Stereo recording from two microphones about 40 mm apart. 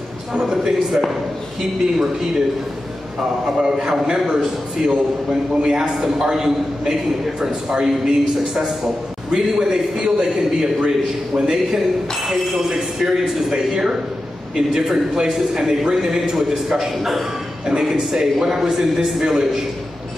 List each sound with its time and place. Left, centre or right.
0.3 s a man's voice: centre
3.7 s a man's voice: centre